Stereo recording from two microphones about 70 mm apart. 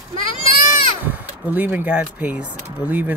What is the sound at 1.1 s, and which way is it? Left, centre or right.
Speech, right.